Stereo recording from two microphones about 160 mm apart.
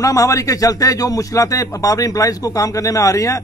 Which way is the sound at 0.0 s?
20° left (ahead or behind).